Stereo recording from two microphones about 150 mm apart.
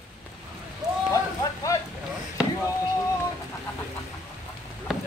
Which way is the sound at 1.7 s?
20° left (ahead or behind).